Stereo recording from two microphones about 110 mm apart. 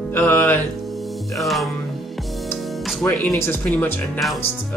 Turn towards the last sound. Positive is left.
turn(degrees=20)  # may be behind; listen again after turning